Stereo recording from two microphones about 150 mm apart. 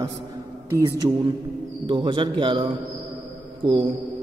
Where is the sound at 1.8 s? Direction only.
35° right (ahead or behind).